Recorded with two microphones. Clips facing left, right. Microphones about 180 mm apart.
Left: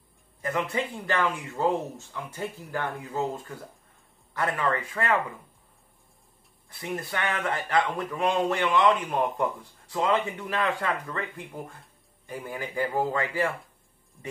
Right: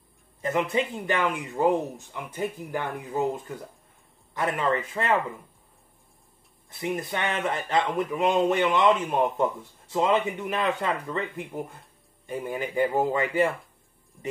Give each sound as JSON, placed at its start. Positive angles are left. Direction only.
{"t": 0.4, "sound": "speech", "side_deg": -20}
{"t": 6.8, "sound": "speech", "side_deg": -20}